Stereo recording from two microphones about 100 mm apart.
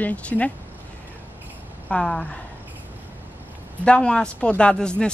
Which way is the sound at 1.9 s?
10° left (ahead or behind).